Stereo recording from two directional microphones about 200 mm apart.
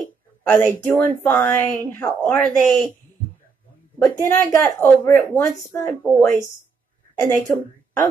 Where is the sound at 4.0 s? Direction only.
15° left (ahead or behind).